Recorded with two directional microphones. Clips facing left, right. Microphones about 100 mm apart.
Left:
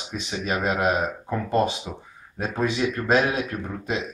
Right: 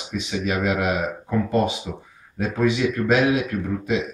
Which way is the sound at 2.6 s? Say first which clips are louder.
Right 4 dB; 35° left (ahead or behind).